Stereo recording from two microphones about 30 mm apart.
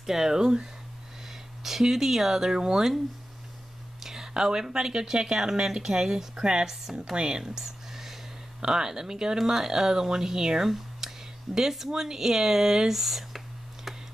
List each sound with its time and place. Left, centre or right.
0.0 s speech: centre
1.6 s speech: centre
4.0 s whispering: centre
4.3 s speech: right
7.6 s a sound: centre
8.5 s speech: right
9.4 s speech: centre
10.7 s a sound: centre
11.9 s speech: centre
13.9 s computer keyboard: centre